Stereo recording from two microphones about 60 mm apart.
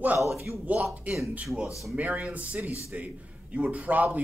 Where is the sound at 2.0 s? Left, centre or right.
Right.